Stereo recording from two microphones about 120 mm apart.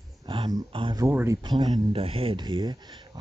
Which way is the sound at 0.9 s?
25° right (ahead or behind).